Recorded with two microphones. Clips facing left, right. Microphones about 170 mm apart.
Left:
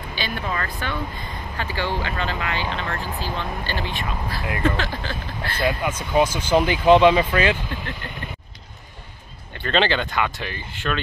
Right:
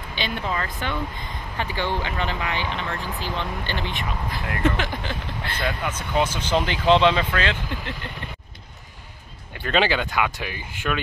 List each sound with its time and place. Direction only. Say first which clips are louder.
0.1 s speech: right 1 dB; 20° right (ahead or behind)
5.6 s speech: left 5 dB; 10° left (ahead or behind)
9.6 s speech: left 1 dB; 5° right (ahead or behind)